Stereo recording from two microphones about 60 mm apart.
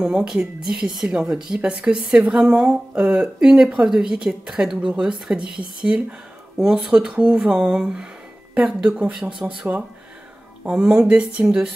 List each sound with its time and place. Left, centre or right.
0.0 s speech: centre
1.3 s speech: centre
9.0 s speech: right